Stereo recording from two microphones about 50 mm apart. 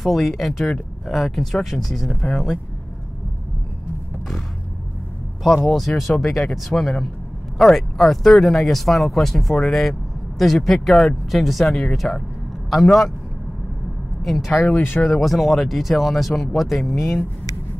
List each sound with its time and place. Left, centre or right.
0.0 s speech: centre
2.0 s speech: centre
5.4 s speech: centre
12.0 s speech: left
12.6 s speech: centre
14.2 s speech: centre
14.7 s speech: left
15.1 s speech: centre